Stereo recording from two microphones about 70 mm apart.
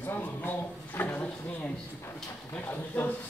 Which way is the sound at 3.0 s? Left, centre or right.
Centre.